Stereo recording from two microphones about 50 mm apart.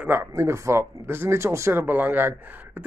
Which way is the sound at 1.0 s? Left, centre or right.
Right.